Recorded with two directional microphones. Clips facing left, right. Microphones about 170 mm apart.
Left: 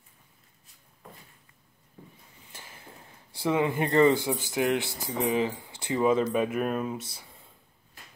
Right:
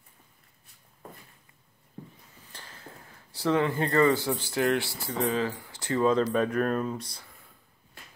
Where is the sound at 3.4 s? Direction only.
15° left (ahead or behind).